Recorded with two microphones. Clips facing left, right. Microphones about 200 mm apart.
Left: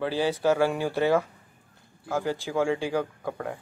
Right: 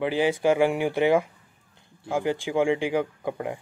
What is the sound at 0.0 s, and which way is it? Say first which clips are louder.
Speech: right 2 dB; 15° right (ahead or behind).